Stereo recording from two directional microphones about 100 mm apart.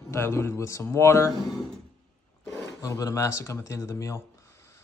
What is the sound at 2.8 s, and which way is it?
Speech, 35° left (ahead or behind).